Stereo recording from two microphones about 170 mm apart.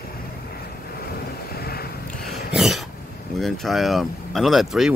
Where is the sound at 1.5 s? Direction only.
65° left (ahead or behind).